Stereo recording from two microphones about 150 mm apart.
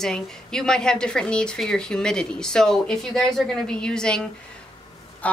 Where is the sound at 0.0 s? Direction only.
5° left (ahead or behind).